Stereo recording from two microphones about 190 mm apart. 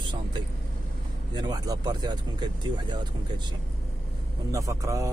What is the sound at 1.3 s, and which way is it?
Speech, 20° right (ahead or behind).